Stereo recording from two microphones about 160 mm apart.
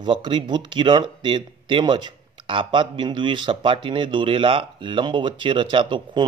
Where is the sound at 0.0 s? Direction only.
30° right (ahead or behind).